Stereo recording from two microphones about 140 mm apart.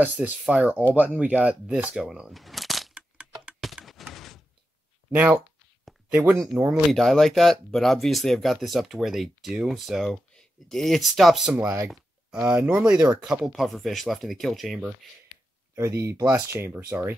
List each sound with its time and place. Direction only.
0.0 s speech: 10° right (ahead or behind)
1.1 s a sound: 10° right (ahead or behind)
5.1 s speech: 10° right (ahead or behind)
11.5 s speech: 20° right (ahead or behind)
11.9 s speech: 5° right (ahead or behind)
15.7 s speech: 20° right (ahead or behind)